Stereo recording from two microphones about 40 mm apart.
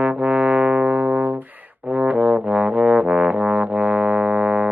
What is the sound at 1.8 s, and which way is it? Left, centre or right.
Brass instrument, right.